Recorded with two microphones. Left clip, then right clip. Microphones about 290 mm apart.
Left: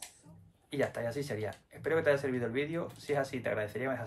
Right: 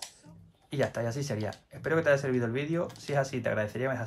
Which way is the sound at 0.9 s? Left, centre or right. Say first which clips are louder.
Right 2 dB; right.